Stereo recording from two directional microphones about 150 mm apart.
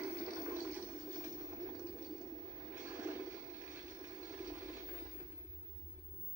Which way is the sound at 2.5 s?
15° right (ahead or behind).